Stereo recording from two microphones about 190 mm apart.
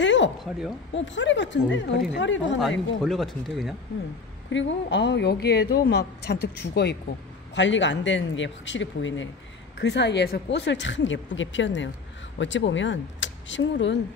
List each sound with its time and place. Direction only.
0.0 s a sound: 70° left (ahead or behind)
0.4 s speech: centre (ahead or behind)
0.9 s speech: 75° left (ahead or behind)
3.0 s speech: centre (ahead or behind)
4.5 s a woman's voice: 75° left (ahead or behind); by 7.0 s 60° left (ahead or behind)
7.5 s speech: 75° left (ahead or behind)
9.8 s speech: 65° left (ahead or behind)